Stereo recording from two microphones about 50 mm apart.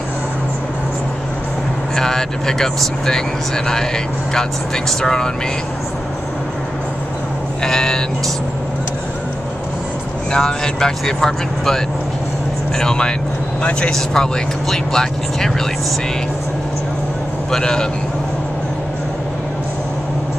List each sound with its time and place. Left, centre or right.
2.0 s speech: centre
7.6 s vehicle: centre
10.3 s speech: centre
13.6 s speech: left
13.8 s speech: centre
17.5 s speech: centre